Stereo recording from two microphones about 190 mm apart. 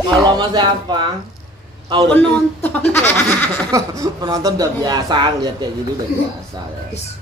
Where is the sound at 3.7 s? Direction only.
20° right (ahead or behind).